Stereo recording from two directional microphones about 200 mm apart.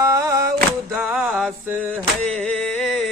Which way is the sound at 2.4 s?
Centre (ahead or behind).